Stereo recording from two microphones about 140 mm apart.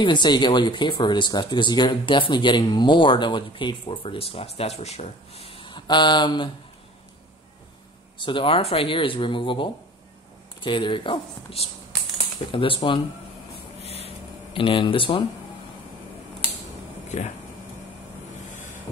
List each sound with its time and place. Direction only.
0.0 s speech: 35° left (ahead or behind)
8.2 s speech: 35° left (ahead or behind)
13.7 s a sound: 45° left (ahead or behind)